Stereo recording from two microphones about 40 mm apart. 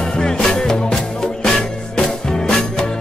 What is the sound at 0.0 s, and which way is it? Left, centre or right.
Music, centre.